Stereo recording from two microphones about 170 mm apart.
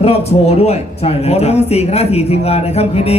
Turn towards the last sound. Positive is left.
turn(degrees=40)  # may be behind; listen again after turning